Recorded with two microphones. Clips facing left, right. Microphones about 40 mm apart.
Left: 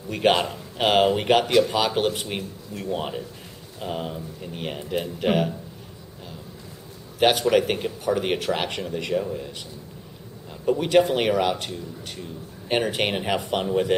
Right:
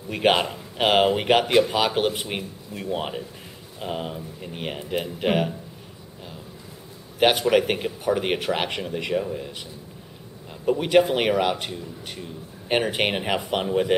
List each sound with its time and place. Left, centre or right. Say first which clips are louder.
0.1 s a man's voice: even; centre
7.2 s a man's voice: even; centre